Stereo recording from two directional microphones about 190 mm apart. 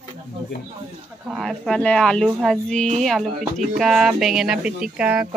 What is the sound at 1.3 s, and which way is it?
Speech, centre (ahead or behind).